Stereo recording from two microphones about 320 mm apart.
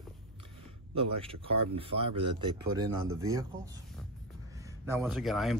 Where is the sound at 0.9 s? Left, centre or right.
Centre.